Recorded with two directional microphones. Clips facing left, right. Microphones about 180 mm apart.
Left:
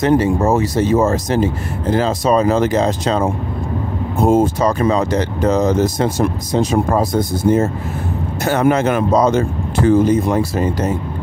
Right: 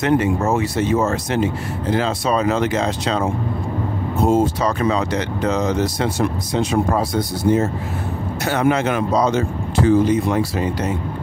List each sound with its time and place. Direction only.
0.0 s speech: 35° left (ahead or behind)